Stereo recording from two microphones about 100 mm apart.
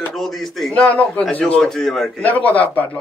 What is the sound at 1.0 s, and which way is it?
A man's voice, 15° left (ahead or behind).